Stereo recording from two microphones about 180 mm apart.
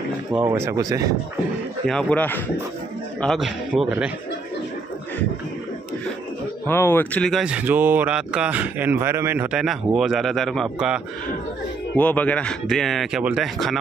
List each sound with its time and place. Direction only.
0.5 s speech: 15° right (ahead or behind)
1.9 s a man's voice: 5° left (ahead or behind)
6.7 s speech: 10° left (ahead or behind)
12.0 s speech: 10° left (ahead or behind)